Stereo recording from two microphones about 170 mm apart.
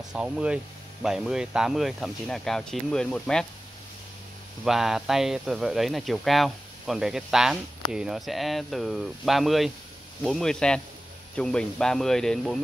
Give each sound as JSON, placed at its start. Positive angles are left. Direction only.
{"t": 0.1, "sound": "speech", "side_deg": -5}
{"t": 4.6, "sound": "speech", "side_deg": 0}